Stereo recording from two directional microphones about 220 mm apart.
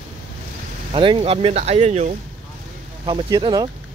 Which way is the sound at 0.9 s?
25° right (ahead or behind).